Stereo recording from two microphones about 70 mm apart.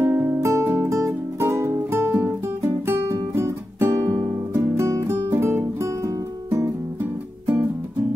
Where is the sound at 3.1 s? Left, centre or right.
Right.